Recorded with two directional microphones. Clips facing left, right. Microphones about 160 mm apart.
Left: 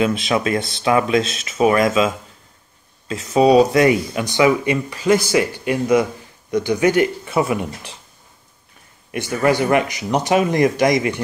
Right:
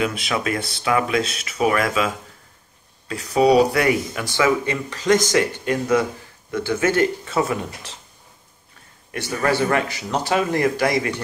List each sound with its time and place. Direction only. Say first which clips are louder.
0.0 s speech: left 5 dB; 25° left (ahead or behind)
9.1 s speech: left 4 dB; 15° left (ahead or behind)